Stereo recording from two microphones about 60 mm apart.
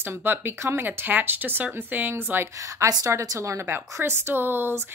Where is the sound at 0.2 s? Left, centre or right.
Right.